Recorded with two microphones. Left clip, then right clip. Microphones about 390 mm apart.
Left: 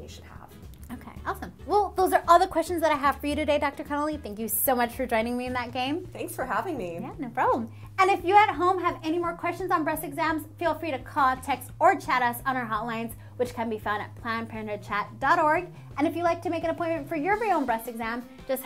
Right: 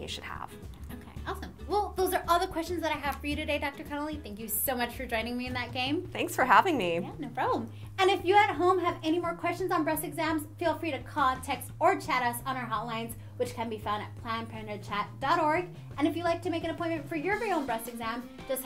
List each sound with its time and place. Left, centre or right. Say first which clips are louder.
1.2 s speech: left 6 dB; left
6.1 s a woman's voice: right 12 dB; right
7.2 s a woman's voice: left 5 dB; left